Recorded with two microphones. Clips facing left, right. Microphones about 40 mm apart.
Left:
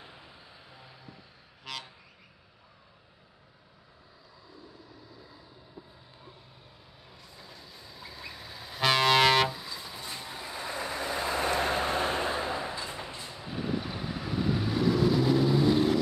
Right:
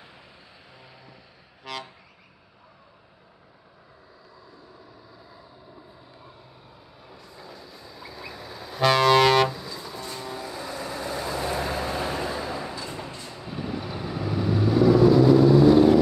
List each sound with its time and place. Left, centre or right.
1.6 s vehicle: centre
7.1 s vehicle: centre